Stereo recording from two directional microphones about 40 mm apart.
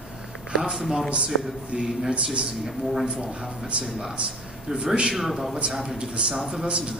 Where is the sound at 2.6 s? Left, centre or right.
Centre.